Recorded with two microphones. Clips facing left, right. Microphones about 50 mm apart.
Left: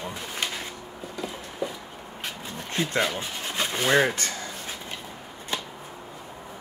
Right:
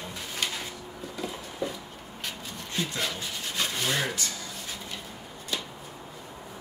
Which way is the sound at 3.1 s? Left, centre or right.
Left.